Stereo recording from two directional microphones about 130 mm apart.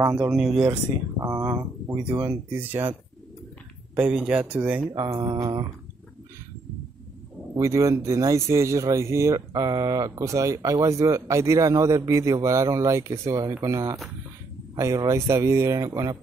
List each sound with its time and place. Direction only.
0.3 s speech: 5° right (ahead or behind)
1.2 s speech: 25° right (ahead or behind)
2.6 s speech: 15° right (ahead or behind)
3.9 s speech: 10° right (ahead or behind)
4.9 s speech: 25° right (ahead or behind)
7.5 s speech: 25° right (ahead or behind)